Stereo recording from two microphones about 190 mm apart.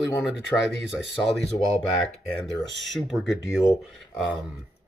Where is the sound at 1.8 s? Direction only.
Centre (ahead or behind).